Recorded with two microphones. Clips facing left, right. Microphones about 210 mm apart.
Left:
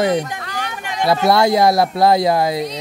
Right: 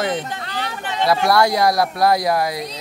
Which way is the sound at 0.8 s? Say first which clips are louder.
Even; 15° left (ahead or behind).